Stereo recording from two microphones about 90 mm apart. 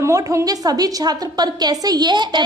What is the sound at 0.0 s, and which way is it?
A woman's voice, 30° right (ahead or behind).